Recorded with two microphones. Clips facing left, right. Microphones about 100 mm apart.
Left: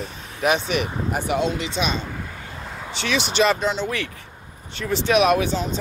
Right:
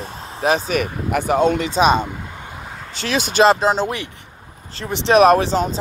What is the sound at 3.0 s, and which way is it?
Speech, 40° right (ahead or behind).